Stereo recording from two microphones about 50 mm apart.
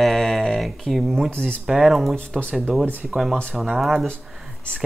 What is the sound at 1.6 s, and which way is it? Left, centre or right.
Speech, centre.